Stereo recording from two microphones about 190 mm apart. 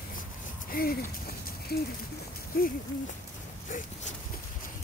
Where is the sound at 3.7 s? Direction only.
45° left (ahead or behind).